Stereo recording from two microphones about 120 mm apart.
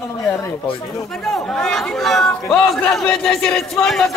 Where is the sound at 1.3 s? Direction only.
5° left (ahead or behind).